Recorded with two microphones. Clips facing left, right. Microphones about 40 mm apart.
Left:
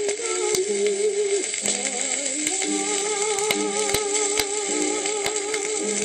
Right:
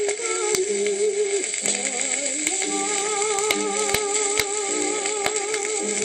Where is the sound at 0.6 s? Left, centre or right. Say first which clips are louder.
Even; right.